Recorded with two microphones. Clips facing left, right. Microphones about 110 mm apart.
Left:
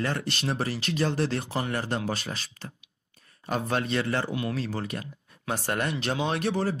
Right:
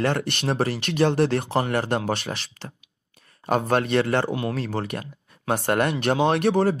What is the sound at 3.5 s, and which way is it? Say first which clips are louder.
Speech: right 6 dB; 60° right (ahead or behind).